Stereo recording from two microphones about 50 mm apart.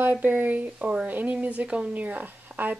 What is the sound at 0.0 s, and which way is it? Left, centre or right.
Speech, right.